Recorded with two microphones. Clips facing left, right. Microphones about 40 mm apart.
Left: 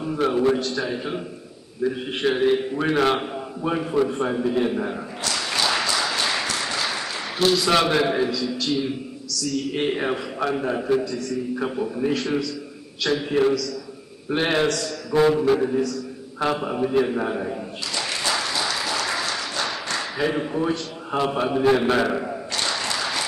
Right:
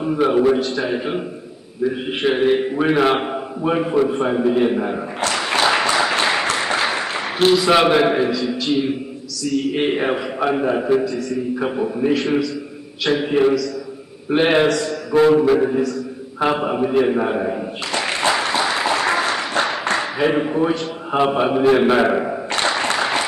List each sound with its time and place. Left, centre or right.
0.0 s a man's voice: right
5.2 s applause: right
7.5 s a man's voice: centre
16.9 s a sound: right